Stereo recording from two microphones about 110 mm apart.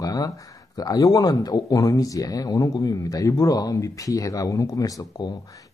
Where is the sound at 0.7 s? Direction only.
35° left (ahead or behind).